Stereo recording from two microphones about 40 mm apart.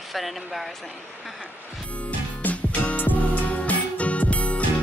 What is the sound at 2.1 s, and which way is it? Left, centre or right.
Music, left.